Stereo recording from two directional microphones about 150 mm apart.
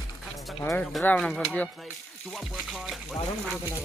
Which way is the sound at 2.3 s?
Centre (ahead or behind).